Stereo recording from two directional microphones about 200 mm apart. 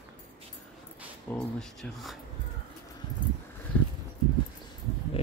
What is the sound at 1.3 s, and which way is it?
Speech, 5° left (ahead or behind).